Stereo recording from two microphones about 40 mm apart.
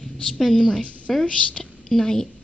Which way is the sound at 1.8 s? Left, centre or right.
Centre.